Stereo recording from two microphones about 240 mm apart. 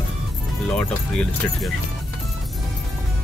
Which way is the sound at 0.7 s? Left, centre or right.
Centre.